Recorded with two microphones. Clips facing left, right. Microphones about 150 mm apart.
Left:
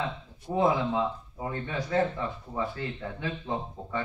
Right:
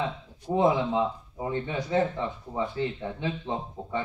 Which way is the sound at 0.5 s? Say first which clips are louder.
Right 2 dB; 20° right (ahead or behind).